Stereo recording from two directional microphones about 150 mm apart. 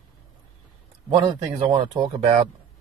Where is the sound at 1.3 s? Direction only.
35° right (ahead or behind).